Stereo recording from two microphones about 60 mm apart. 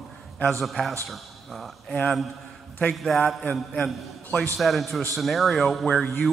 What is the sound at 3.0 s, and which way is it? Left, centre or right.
Speech, centre.